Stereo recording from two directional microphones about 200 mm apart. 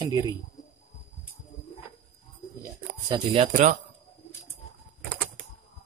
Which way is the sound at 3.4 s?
35° right (ahead or behind).